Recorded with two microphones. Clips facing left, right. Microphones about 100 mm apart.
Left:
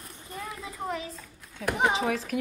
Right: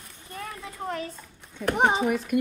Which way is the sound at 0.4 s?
10° left (ahead or behind).